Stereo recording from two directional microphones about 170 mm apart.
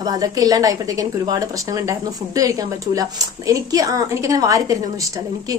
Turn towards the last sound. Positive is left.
turn(degrees=-20)  # may be behind; listen again after turning